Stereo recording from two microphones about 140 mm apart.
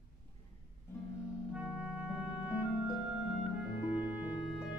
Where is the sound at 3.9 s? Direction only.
10° right (ahead or behind).